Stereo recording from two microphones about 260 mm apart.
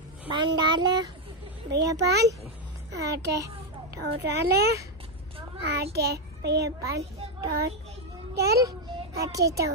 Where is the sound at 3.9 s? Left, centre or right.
Right.